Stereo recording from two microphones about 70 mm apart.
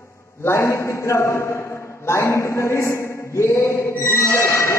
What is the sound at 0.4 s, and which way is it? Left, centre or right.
A man's voice, left.